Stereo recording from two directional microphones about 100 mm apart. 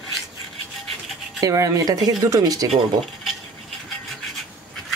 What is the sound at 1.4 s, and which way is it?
Speech, 35° right (ahead or behind).